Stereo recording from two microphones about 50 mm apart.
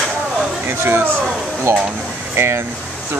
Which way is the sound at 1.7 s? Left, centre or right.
Right.